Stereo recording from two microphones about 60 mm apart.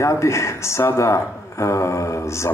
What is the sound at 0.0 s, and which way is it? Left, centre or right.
Speech, left.